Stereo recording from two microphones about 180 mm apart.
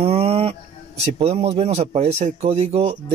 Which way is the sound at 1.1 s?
35° right (ahead or behind).